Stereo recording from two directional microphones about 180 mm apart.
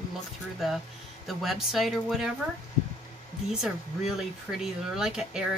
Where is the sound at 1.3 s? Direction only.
Centre (ahead or behind).